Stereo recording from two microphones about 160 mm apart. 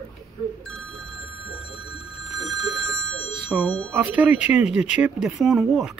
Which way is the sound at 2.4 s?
25° right (ahead or behind).